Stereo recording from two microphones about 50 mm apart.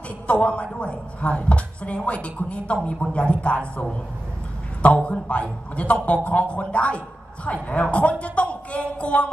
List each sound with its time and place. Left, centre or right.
0.3 s a woman's voice: left
5.0 s a woman's voice: left